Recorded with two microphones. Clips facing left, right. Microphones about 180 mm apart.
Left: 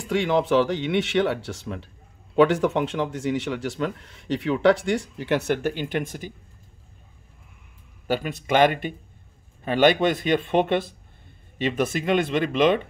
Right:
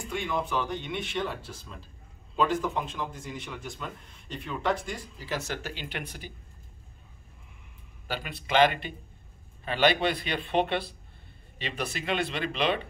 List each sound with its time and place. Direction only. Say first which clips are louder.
0.0 s speech: left 9 dB; 85° left; by 6.3 s 45° left (ahead or behind)
8.1 s speech: left 7 dB; 45° left (ahead or behind)